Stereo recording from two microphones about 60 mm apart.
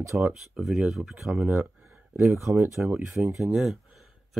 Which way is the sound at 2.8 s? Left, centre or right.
Right.